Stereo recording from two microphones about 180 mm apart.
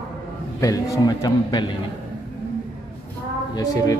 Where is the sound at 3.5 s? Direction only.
20° left (ahead or behind).